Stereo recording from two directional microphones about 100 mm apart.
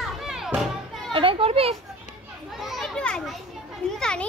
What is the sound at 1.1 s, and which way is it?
Children playing, 60° right (ahead or behind).